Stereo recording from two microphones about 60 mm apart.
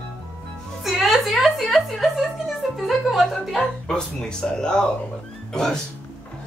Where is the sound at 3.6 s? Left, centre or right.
Centre.